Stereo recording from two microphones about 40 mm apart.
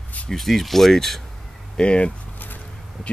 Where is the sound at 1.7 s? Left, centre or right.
Left.